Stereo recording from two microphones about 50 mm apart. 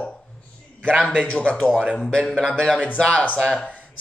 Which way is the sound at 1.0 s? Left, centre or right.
Centre.